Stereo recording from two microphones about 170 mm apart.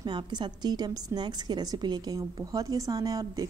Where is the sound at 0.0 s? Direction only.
25° right (ahead or behind).